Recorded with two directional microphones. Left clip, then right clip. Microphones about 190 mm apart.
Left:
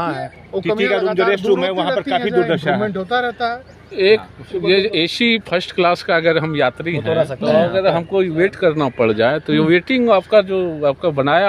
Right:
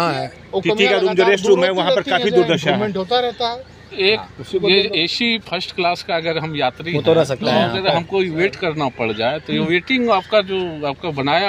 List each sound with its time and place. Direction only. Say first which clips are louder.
0.0 s speech: right 2 dB; 25° right (ahead or behind)
0.6 s speech: right 2 dB; 5° left (ahead or behind)
3.9 s a man's voice: left 3 dB; 50° left (ahead or behind)
7.1 s speech: right 1 dB; 35° right (ahead or behind)
7.7 s a man's voice: left 2 dB; 50° left (ahead or behind)